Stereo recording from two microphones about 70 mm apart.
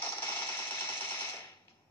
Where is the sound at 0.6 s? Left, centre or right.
Left.